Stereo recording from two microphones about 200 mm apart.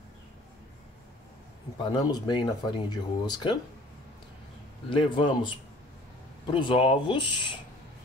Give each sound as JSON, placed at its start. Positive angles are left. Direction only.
{"t": 1.8, "sound": "speech", "side_deg": 20}
{"t": 4.8, "sound": "speech", "side_deg": 25}